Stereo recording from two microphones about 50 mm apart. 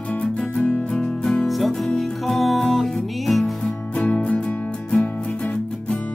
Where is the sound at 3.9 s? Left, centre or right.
Left.